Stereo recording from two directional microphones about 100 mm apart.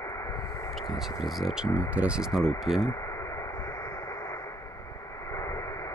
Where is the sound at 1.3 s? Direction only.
Centre (ahead or behind).